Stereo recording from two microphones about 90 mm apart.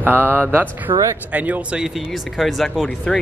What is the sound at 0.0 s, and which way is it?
Speech, 25° right (ahead or behind).